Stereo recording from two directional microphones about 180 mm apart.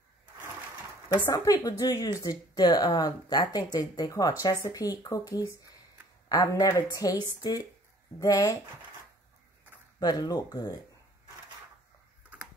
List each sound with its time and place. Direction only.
1.2 s speech: 20° left (ahead or behind)
9.9 s speech: 20° left (ahead or behind)